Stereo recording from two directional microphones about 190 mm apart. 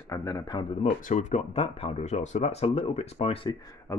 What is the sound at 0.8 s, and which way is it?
Speech, 40° left (ahead or behind).